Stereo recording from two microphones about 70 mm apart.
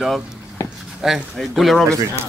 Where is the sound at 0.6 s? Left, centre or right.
Left.